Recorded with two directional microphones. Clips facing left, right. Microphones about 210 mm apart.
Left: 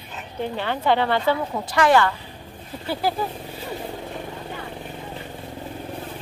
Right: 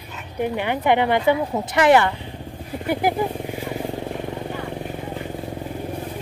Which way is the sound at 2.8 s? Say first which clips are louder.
Right 4 dB; 15° right (ahead or behind).